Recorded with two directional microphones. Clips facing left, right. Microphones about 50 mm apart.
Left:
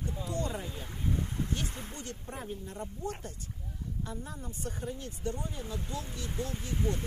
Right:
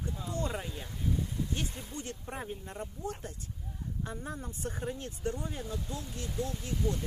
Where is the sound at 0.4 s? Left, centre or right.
Right.